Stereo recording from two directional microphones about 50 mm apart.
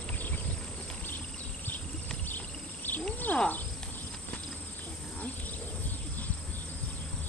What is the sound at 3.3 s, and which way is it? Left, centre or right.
Wild animals, left.